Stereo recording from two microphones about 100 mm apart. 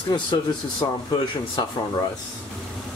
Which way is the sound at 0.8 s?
55° left (ahead or behind).